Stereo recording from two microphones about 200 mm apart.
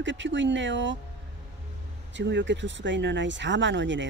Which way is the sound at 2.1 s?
65° right (ahead or behind).